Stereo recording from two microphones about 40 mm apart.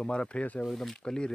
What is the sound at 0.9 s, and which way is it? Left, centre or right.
Speech, centre.